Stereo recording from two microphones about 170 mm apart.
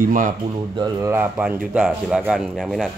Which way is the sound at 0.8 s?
20° right (ahead or behind).